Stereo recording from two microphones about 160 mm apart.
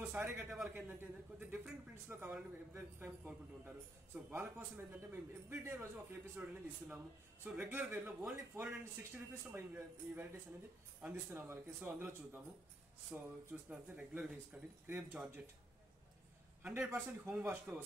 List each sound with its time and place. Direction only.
0.1 s a man's voice: 5° right (ahead or behind)
16.6 s a man's voice: 10° right (ahead or behind)